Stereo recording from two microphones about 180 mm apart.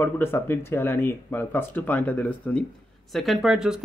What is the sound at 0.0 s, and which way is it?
Speech, 10° left (ahead or behind).